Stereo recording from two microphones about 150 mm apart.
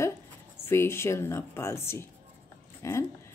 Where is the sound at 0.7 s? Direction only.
15° left (ahead or behind).